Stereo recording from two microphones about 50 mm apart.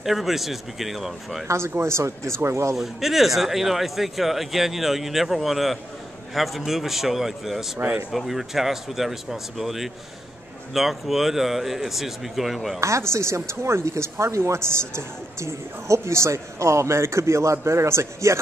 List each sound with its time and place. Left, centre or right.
0.0 s speech: centre
1.8 s speech: right
2.7 s speech: centre
12.8 s speech: right